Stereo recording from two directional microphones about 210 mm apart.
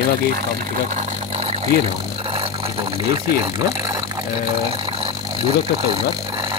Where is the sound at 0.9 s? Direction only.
30° right (ahead or behind).